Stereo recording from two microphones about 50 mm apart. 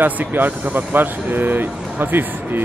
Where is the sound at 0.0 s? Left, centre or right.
Right.